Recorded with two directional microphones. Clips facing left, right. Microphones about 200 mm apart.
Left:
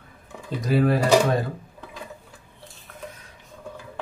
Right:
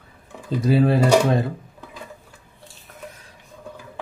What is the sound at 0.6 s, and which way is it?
Speech, 30° right (ahead or behind).